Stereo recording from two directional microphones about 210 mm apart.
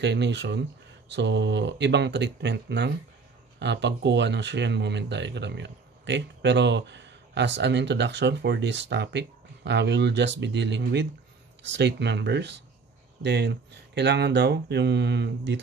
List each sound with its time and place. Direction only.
0.0 s speech: 55° right (ahead or behind)